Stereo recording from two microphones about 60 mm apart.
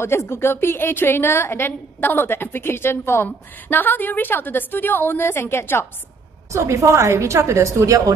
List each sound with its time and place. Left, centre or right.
0.0 s a woman's voice: left
6.5 s a woman's voice: right